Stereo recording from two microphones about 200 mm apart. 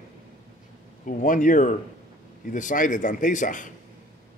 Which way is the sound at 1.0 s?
40° left (ahead or behind).